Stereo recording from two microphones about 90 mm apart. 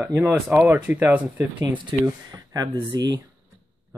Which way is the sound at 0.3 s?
20° right (ahead or behind).